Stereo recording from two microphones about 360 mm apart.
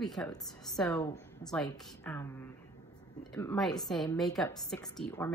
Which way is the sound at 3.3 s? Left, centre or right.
Centre.